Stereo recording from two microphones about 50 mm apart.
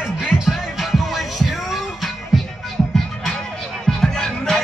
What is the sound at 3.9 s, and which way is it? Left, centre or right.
Music, centre.